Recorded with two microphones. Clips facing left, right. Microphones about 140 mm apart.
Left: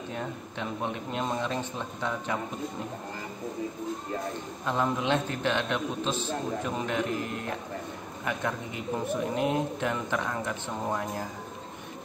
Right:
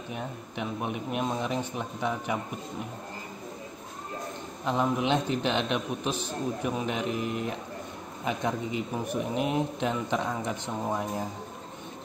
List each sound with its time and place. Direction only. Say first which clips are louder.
0.1 s speech: even; 15° right (ahead or behind)
4.6 s a man's voice: right 1 dB; 20° right (ahead or behind)